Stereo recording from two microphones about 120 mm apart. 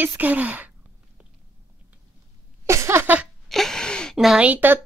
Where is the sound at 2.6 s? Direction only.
25° right (ahead or behind).